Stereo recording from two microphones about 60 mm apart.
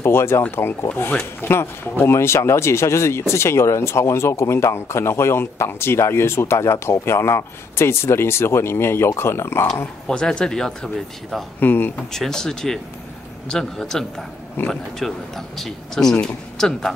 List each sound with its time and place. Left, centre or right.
0.0 s speech: left
10.0 s speech: centre
11.6 s speech: left
12.1 s speech: centre